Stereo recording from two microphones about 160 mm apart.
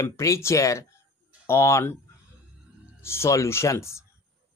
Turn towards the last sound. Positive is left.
turn(degrees=15)  # may be behind; listen again after turning